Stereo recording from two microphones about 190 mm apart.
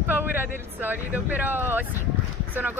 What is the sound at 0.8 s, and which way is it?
Speech, 10° right (ahead or behind).